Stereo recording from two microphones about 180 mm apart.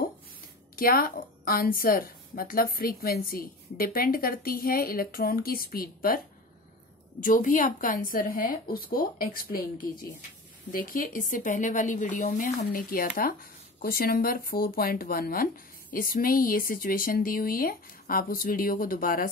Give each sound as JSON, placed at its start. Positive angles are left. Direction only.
{"t": 0.7, "sound": "speech", "side_deg": 55}
{"t": 10.7, "sound": "speech", "side_deg": 50}
{"t": 12.6, "sound": "speech", "side_deg": 50}